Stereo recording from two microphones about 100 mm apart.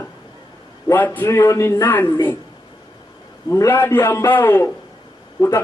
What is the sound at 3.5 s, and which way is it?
A man's voice, 25° left (ahead or behind).